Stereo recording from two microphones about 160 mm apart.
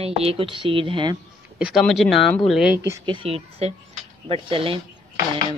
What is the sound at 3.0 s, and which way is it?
Speech, 35° right (ahead or behind).